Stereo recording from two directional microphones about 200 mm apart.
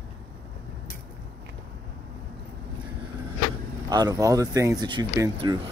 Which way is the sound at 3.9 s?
20° right (ahead or behind).